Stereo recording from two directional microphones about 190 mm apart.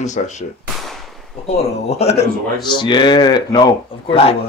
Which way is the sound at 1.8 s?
35° left (ahead or behind).